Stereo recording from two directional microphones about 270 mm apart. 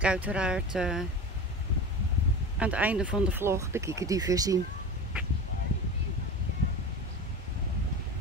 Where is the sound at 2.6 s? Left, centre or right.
Centre.